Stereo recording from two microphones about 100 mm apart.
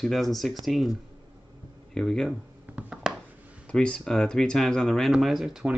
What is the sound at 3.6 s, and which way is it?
Speech, 10° left (ahead or behind).